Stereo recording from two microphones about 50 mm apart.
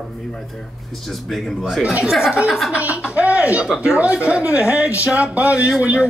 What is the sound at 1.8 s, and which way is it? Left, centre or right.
Speech, centre.